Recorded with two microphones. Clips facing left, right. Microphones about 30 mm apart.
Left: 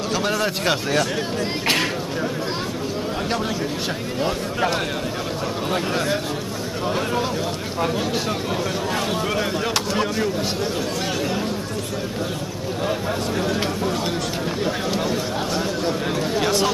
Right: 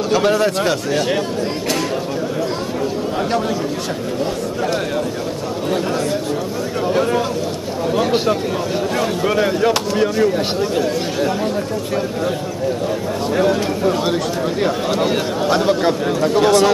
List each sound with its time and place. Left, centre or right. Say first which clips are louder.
0.1 s a man's voice: right 7 dB; centre
6.9 s speech: right 5 dB; centre
15.5 s speech: right 11 dB; right
16.3 s speech: right 8 dB; centre